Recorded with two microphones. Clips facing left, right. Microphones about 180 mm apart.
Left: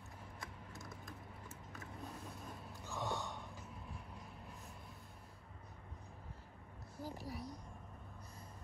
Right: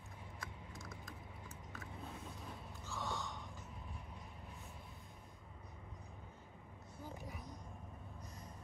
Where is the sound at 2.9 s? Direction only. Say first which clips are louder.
Left 2 dB; 15° left (ahead or behind).